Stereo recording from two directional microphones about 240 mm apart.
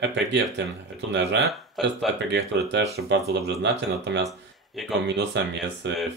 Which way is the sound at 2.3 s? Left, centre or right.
Right.